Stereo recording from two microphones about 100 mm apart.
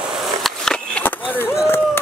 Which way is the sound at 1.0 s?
20° left (ahead or behind).